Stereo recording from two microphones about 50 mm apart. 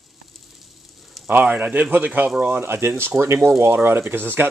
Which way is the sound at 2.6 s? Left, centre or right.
Right.